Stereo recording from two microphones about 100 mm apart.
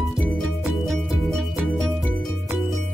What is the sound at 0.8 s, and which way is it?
Music, centre (ahead or behind).